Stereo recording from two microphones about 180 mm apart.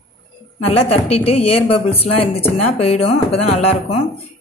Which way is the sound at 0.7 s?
35° left (ahead or behind).